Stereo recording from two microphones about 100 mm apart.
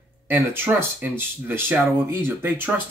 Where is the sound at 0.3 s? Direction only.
20° right (ahead or behind).